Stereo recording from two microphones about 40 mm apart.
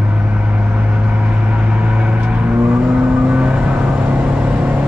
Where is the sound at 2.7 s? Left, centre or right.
Right.